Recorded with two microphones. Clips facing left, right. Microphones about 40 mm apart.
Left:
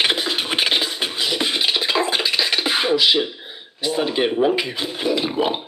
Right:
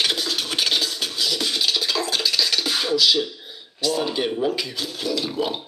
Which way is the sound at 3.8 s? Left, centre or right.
Left.